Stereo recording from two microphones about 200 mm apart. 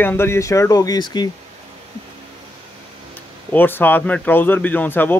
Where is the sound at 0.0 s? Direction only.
10° left (ahead or behind).